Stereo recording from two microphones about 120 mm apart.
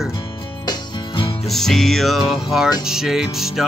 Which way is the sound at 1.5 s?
5° left (ahead or behind).